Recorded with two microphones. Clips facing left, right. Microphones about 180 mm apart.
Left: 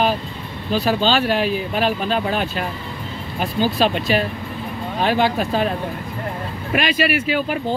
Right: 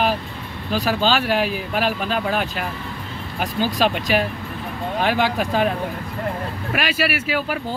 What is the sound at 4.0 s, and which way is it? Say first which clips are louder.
Speech: left 1 dB; 10° right (ahead or behind).